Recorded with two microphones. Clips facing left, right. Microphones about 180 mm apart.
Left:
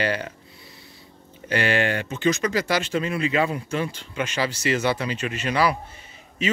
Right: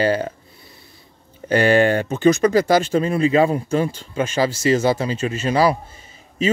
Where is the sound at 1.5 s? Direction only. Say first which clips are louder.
Right 8 dB; 45° right (ahead or behind).